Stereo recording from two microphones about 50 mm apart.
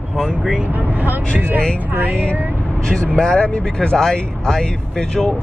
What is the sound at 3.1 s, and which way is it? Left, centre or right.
Speech, centre.